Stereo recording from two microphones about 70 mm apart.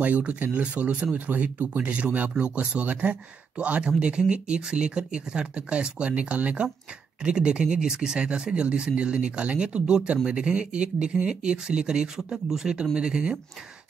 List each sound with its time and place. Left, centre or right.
0.0 s speech: right